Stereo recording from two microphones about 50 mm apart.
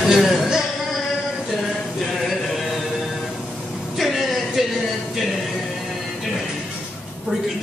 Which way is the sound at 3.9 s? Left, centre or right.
Centre.